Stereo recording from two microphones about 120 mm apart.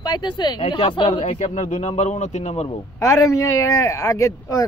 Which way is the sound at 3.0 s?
30° left (ahead or behind).